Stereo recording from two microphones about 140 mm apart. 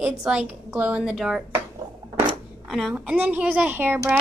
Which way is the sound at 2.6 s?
Centre (ahead or behind).